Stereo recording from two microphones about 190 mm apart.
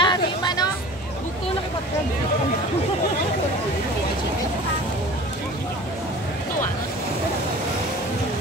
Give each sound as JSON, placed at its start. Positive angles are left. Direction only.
{"t": 0.0, "sound": "vehicle", "side_deg": 20}